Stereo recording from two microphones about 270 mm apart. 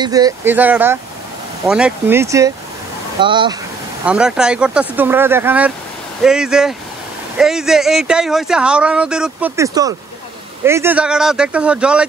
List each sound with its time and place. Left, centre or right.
0.0 s speech: centre
4.0 s speech: centre